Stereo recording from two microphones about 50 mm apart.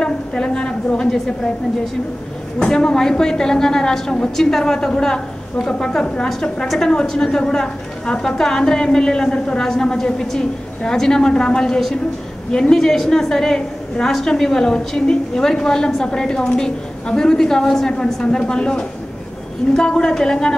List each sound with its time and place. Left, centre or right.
0.0 s a woman's voice: centre
2.6 s a woman's voice: centre